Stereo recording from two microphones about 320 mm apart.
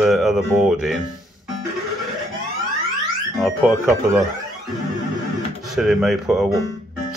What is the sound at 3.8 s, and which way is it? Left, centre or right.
Speech, centre.